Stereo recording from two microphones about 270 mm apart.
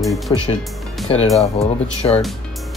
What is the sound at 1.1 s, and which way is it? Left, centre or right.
Speech, centre.